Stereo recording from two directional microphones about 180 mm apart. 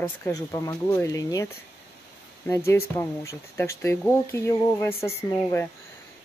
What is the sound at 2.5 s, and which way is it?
Speech, 15° left (ahead or behind).